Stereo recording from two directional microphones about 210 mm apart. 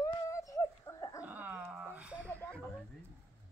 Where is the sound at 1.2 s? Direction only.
5° right (ahead or behind).